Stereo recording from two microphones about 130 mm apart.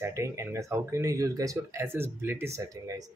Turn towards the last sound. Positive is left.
turn(degrees=-30)  # may be behind; listen again after turning